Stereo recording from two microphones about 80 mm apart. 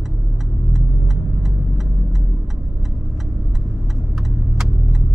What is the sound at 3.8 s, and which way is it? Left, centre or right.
Vehicle, centre.